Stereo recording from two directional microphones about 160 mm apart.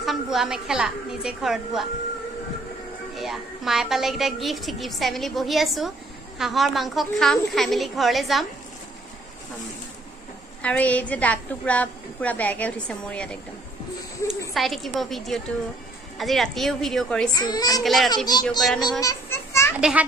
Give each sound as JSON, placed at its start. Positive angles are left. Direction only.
{"t": 0.0, "sound": "a woman's voice", "side_deg": 0}
{"t": 3.2, "sound": "a woman's voice", "side_deg": 0}
{"t": 10.6, "sound": "a woman's voice", "side_deg": 10}
{"t": 14.5, "sound": "a woman's voice", "side_deg": 0}
{"t": 17.3, "sound": "a child's voice", "side_deg": 25}
{"t": 17.8, "sound": "a woman's voice", "side_deg": 0}
{"t": 18.1, "sound": "a child's voice", "side_deg": 25}
{"t": 18.8, "sound": "children playing", "side_deg": 25}
{"t": 19.8, "sound": "a child's voice", "side_deg": -5}